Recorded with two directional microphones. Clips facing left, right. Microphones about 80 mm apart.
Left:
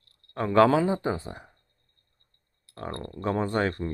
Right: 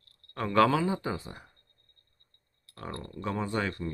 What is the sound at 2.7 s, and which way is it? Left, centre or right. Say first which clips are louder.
Speech: left 4 dB; left.